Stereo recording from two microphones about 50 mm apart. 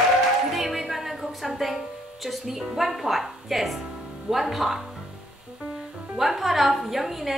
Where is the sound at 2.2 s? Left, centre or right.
Centre.